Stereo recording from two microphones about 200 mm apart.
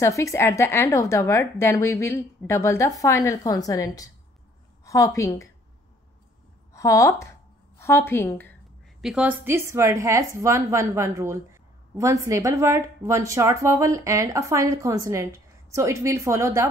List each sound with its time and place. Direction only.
0.0 s a woman's voice: 15° left (ahead or behind)
6.7 s a woman's voice: 15° left (ahead or behind)
9.0 s a woman's voice: 5° right (ahead or behind)